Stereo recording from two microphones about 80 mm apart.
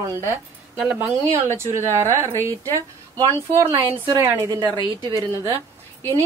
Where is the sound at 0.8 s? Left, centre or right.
Centre.